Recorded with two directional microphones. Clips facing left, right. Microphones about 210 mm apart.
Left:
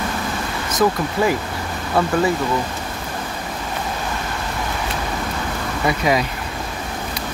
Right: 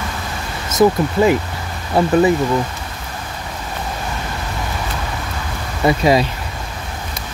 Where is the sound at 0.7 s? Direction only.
25° right (ahead or behind).